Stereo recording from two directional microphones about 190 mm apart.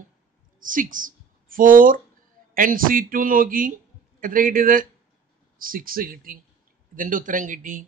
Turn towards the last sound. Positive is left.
turn(degrees=-45)  # may be behind; listen again after turning